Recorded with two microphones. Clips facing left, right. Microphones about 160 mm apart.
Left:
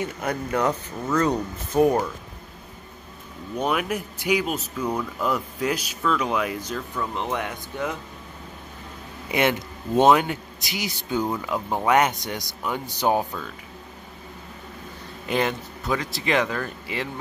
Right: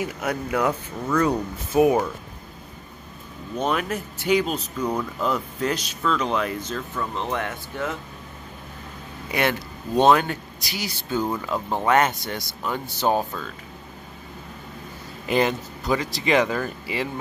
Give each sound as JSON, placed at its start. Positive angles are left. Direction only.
{"t": 0.0, "sound": "speech", "side_deg": -5}
{"t": 3.6, "sound": "speech", "side_deg": 10}
{"t": 9.3, "sound": "speech", "side_deg": 20}
{"t": 11.2, "sound": "speech", "side_deg": 0}
{"t": 15.2, "sound": "speech", "side_deg": 0}